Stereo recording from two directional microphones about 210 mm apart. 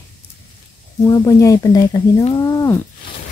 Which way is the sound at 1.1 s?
15° left (ahead or behind).